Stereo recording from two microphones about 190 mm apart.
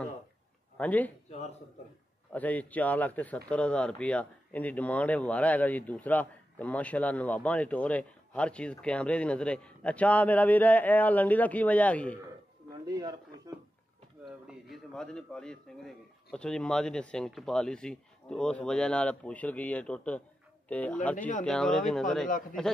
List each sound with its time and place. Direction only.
0.7 s speech: 10° left (ahead or behind)
2.3 s speech: 10° left (ahead or behind)
12.8 s a sound: 20° right (ahead or behind)
14.7 s a man's voice: 5° left (ahead or behind)